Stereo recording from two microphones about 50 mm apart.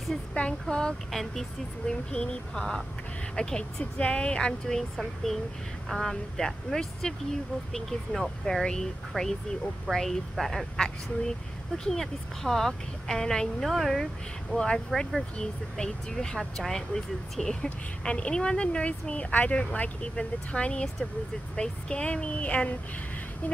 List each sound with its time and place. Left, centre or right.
0.1 s speech: centre
1.1 s a woman's voice: centre
1.9 s a woman's voice: centre
9.8 s a woman's voice: centre
13.7 s a woman's voice: centre
14.5 s speech: left
14.9 s a woman's voice: centre
15.3 s speech: centre